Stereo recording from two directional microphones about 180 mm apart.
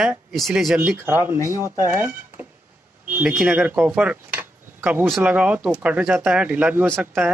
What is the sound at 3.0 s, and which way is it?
Speech, 5° right (ahead or behind).